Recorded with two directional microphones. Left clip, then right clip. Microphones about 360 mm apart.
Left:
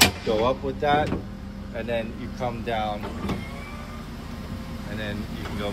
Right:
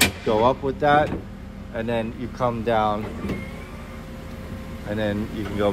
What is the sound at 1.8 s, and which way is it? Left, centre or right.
Speech, right.